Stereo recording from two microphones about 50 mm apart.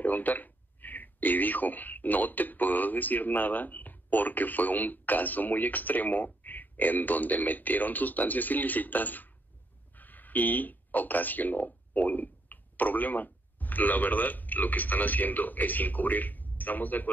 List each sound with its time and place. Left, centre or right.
0.0 s speech: left